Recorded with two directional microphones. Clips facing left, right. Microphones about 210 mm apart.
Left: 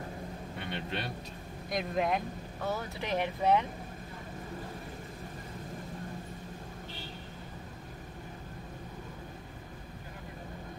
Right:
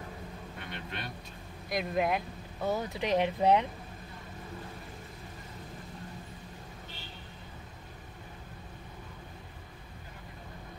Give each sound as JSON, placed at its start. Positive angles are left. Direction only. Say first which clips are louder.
{"t": 0.7, "sound": "speech", "louder": "left 5 dB", "side_deg": 30}
{"t": 1.7, "sound": "speech", "louder": "right 1 dB", "side_deg": -5}
{"t": 2.7, "sound": "speech", "louder": "right 5 dB", "side_deg": -15}